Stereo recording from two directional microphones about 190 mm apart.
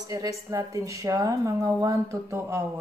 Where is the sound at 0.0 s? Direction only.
15° right (ahead or behind).